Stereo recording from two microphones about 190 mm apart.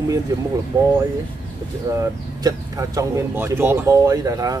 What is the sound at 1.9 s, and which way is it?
Speech, 15° right (ahead or behind).